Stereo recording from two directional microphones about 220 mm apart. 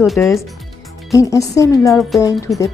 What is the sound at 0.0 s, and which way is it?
Speech, centre (ahead or behind).